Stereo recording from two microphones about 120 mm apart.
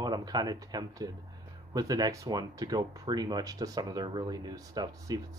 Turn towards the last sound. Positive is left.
turn(degrees=-30)  # may be behind; listen again after turning